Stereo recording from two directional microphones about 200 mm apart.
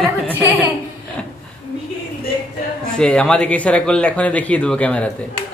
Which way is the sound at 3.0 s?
5° left (ahead or behind).